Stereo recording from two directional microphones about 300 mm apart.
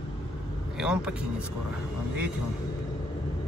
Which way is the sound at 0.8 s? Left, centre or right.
Centre.